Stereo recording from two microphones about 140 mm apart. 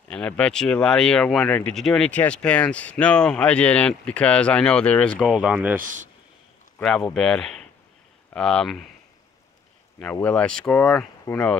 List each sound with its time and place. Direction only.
0.1 s speech: 5° left (ahead or behind)
5.3 s speech: 5° right (ahead or behind)
5.8 s speech: 70° right (ahead or behind)
7.2 s speech: 5° left (ahead or behind)
10.2 s speech: 5° left (ahead or behind)